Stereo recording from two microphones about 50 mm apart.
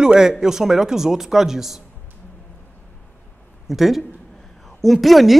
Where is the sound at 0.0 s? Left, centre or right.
Centre.